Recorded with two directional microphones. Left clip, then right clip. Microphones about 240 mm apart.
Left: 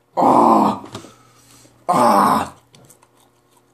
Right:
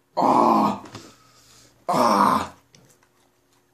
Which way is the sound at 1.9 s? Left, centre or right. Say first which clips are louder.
Left 5 dB; centre.